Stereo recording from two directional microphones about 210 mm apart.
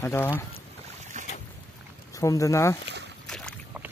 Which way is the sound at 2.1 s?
15° left (ahead or behind).